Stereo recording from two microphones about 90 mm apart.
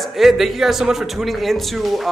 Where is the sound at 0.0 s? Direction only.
Centre (ahead or behind).